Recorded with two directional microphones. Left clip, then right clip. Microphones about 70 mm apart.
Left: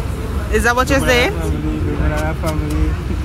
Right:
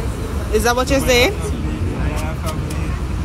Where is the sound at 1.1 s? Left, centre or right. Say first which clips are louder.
Right 3 dB; centre.